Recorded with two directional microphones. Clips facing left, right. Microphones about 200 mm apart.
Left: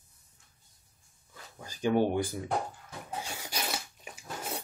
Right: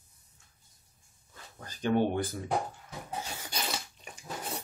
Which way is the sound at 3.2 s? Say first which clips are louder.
Left 1 dB; 10° left (ahead or behind).